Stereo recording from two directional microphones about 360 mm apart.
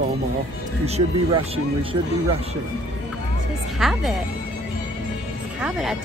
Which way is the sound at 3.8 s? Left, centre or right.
Centre.